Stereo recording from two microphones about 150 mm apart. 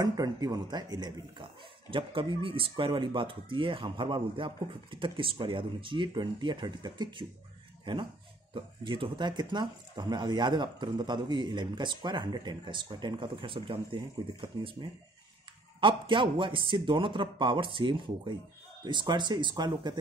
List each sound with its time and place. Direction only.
0.0 s speech: 25° right (ahead or behind)